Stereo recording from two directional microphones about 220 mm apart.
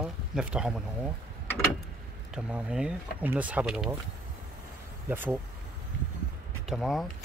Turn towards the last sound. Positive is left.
turn(degrees=0)  # may be behind; listen again after turning